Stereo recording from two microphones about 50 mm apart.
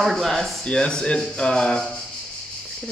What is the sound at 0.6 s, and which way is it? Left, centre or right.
Speech, centre.